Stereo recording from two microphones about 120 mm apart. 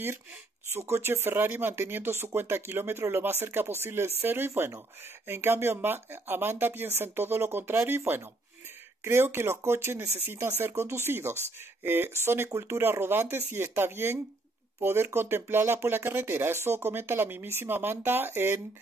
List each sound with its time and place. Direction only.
0.7 s speech: 20° right (ahead or behind)